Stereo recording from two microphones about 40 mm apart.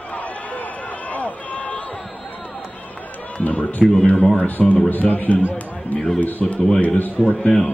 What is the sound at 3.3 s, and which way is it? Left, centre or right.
A man's voice, left.